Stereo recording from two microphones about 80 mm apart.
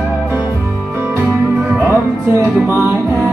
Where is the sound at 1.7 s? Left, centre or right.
Right.